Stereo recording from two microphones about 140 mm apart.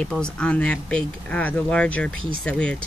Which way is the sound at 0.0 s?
5° left (ahead or behind).